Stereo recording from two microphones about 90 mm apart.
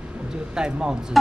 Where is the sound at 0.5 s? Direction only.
10° right (ahead or behind).